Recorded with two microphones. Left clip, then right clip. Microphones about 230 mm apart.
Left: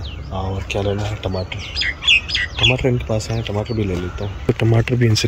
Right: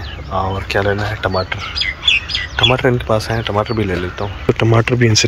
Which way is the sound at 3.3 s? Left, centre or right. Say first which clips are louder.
Right 7 dB; right.